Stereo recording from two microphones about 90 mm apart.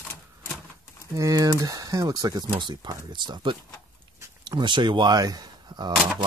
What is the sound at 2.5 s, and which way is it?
Speech, 60° right (ahead or behind).